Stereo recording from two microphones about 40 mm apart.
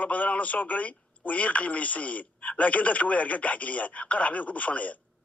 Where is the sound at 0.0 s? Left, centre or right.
Left.